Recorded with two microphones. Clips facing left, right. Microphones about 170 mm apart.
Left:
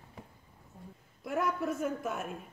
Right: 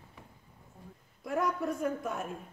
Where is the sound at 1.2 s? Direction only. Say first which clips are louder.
Right 1 dB; centre (ahead or behind).